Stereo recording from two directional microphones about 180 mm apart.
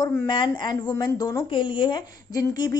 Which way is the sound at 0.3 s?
25° left (ahead or behind).